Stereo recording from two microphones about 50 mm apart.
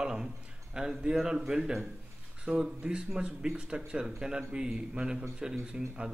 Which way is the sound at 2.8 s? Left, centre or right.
Right.